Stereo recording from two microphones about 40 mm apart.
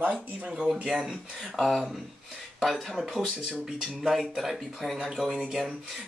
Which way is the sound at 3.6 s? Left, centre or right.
Centre.